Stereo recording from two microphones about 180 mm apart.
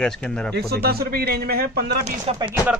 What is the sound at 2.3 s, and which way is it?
Speech, 35° right (ahead or behind).